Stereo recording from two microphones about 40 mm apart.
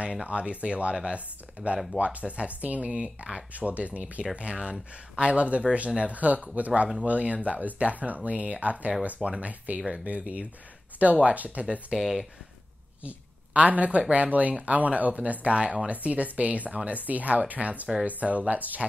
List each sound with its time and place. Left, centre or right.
0.0 s speech: right
12.0 s speech: centre
13.0 s speech: right